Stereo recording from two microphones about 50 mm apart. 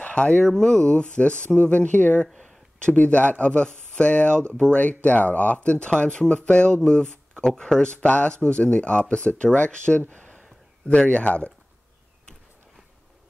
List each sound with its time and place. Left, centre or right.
0.0 s speech: left
10.0 s a sound: left
10.9 s speech: left